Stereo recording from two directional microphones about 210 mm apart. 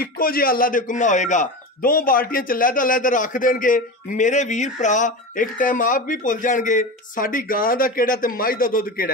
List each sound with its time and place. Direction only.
0.0 s a man's voice: 45° left (ahead or behind)